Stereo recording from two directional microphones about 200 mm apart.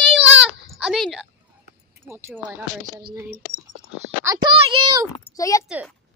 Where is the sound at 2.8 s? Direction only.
50° right (ahead or behind).